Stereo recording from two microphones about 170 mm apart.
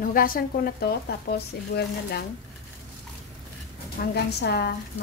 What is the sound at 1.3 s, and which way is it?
Speech, 65° left (ahead or behind).